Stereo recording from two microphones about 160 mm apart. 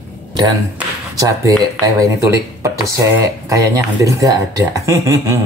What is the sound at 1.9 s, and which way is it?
Speech, 20° right (ahead or behind).